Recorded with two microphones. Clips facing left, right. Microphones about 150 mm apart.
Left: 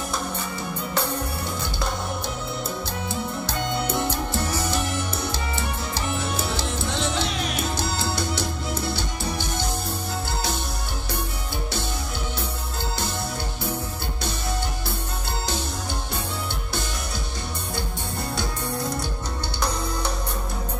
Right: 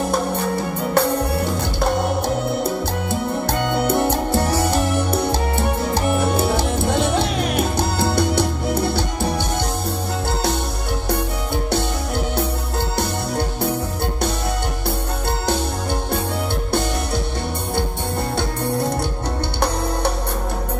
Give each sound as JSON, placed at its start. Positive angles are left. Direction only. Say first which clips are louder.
{"t": 0.1, "sound": "music", "louder": "right 9 dB", "side_deg": -60}
{"t": 18.3, "sound": "music", "louder": "right 6 dB", "side_deg": -60}